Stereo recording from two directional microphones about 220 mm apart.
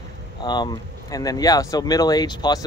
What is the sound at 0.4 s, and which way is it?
Speech, 20° left (ahead or behind).